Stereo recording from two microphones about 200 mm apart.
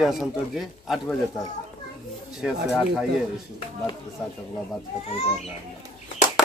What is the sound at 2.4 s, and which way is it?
Speech, 5° right (ahead or behind).